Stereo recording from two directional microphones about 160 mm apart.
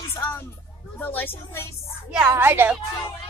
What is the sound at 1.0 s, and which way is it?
Speech, 10° left (ahead or behind).